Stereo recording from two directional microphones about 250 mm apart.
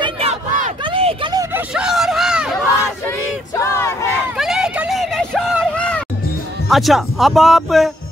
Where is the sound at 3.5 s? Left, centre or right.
Centre.